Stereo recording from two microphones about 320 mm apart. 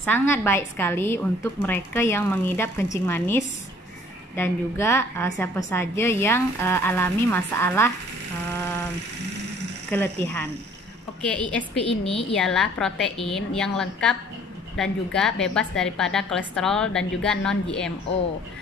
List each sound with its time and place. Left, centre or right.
0.0 s a woman's voice: centre
9.8 s a woman's voice: centre
11.9 s a woman's voice: centre
12.4 s a woman's voice: centre